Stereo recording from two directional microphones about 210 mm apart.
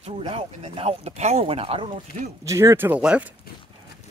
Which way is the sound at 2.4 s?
15° right (ahead or behind).